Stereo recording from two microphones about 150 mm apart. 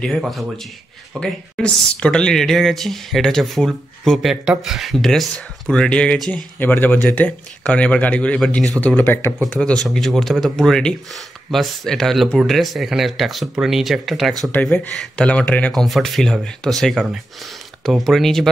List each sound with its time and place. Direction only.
0.0 s speech: centre (ahead or behind)
9.4 s speech: 5° left (ahead or behind)
14.5 s speech: 10° left (ahead or behind)